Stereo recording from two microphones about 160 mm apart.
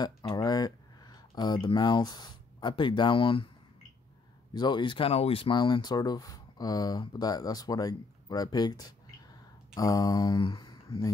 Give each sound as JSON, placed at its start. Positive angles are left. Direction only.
{"t": 0.3, "sound": "speech", "side_deg": 25}
{"t": 4.6, "sound": "speech", "side_deg": 30}
{"t": 9.8, "sound": "mantra", "side_deg": 25}